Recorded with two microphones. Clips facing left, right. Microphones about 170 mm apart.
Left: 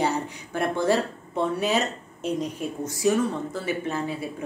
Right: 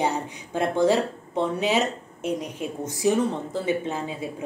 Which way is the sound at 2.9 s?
20° right (ahead or behind).